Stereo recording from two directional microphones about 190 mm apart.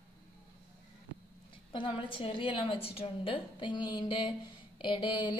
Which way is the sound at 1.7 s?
25° left (ahead or behind).